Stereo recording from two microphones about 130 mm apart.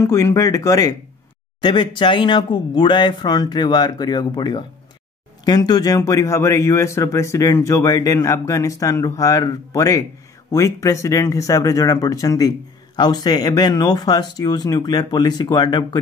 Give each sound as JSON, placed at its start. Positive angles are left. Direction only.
{"t": 0.0, "sound": "speech", "side_deg": 25}